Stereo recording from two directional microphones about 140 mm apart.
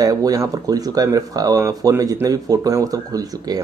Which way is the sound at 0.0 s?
25° right (ahead or behind).